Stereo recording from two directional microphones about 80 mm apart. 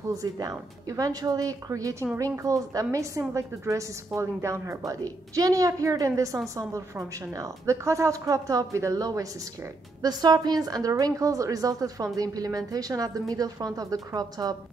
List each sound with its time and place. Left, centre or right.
0.1 s a woman's voice: right